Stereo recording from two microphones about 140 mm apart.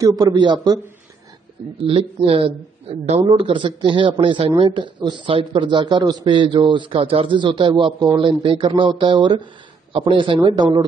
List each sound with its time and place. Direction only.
0.0 s a man's voice: 25° right (ahead or behind)
1.8 s a man's voice: 40° right (ahead or behind)